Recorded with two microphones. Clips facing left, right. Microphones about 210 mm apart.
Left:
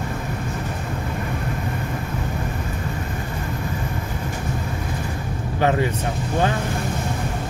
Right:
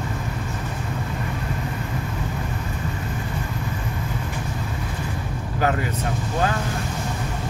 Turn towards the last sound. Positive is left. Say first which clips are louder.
# left 3 dB
turn(degrees=25)  # may be behind; listen again after turning